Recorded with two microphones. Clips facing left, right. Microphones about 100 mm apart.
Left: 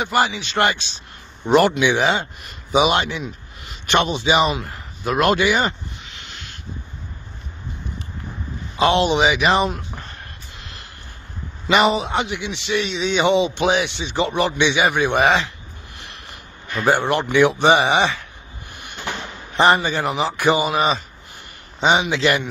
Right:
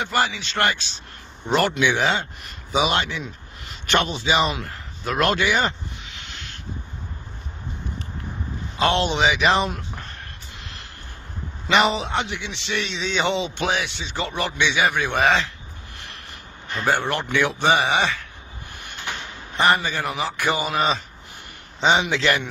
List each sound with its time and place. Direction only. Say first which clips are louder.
0.0 s a man's voice: left 3 dB; 15° left (ahead or behind)
4.6 s snake: left 4 dB; 10° left (ahead or behind)
8.7 s a man's voice: left 4 dB; 10° left (ahead or behind)
10.6 s snort: even; 5° left (ahead or behind)
11.6 s a man's voice: left 3 dB; 5° left (ahead or behind)
16.8 s speech: left 4 dB; 20° left (ahead or behind)
19.5 s a man's voice: left 4 dB; 25° left (ahead or behind)